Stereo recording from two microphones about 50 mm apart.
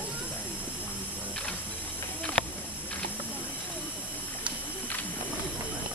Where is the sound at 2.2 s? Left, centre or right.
Left.